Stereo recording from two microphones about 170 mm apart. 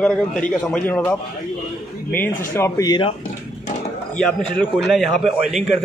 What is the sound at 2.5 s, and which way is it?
Speech, 15° left (ahead or behind).